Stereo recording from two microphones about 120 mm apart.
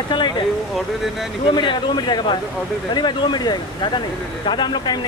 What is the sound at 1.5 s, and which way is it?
Speech, 40° left (ahead or behind).